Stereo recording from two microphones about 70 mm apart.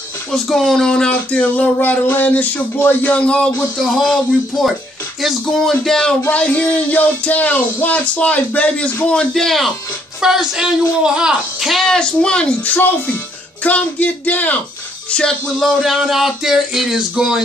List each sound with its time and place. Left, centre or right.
0.3 s speech: centre
1.1 s speech: left
6.2 s speech: centre
9.3 s speech: centre
11.8 s speech: centre
12.7 s speech: left
15.0 s speech: centre